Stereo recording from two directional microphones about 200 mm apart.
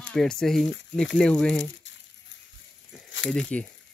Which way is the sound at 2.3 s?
60° left (ahead or behind).